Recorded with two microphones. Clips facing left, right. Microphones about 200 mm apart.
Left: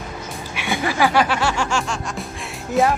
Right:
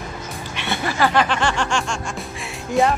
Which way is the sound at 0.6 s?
10° left (ahead or behind).